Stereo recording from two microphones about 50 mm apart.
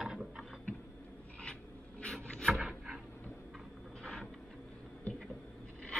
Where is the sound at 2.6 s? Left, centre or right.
Centre.